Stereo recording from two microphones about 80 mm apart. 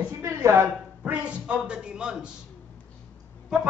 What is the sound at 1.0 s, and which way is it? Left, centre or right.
Speech, centre.